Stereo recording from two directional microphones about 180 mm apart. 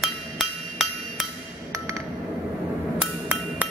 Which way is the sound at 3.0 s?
5° right (ahead or behind).